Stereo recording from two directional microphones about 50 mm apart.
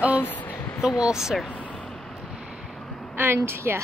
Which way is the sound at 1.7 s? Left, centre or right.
Centre.